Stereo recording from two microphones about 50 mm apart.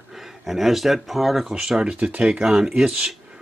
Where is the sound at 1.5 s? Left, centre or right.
Centre.